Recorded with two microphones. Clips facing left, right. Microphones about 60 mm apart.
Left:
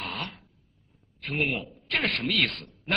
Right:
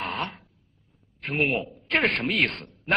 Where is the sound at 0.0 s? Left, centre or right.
Right.